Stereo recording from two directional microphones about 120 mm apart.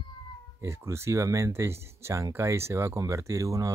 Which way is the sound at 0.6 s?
20° right (ahead or behind).